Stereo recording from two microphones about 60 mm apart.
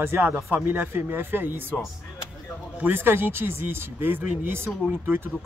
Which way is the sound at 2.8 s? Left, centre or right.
Right.